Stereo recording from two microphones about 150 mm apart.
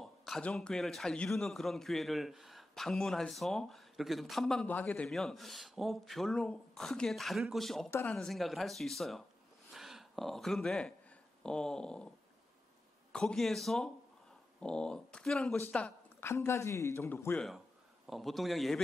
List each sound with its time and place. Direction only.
0.0 s a man's voice: centre (ahead or behind)
13.1 s a man's voice: 5° left (ahead or behind)
18.0 s a man's voice: centre (ahead or behind)